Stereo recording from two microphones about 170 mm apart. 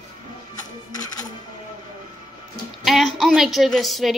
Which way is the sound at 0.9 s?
25° left (ahead or behind).